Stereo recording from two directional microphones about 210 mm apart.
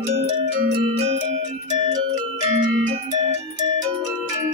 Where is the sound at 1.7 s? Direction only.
20° right (ahead or behind).